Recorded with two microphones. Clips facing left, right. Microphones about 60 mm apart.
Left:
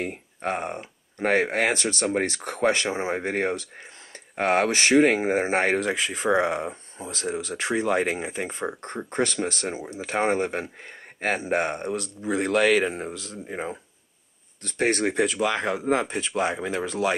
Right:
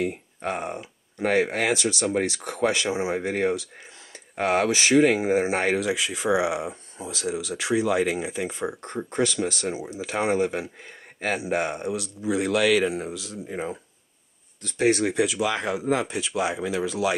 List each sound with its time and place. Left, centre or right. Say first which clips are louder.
0.0 s speech: right 2 dB; left